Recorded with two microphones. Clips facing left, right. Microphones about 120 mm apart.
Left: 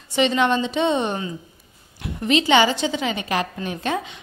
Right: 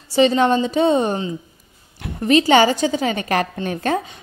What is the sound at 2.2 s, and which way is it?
A woman's voice, 45° right (ahead or behind).